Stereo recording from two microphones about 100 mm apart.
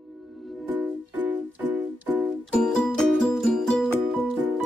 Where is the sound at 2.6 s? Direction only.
5° left (ahead or behind).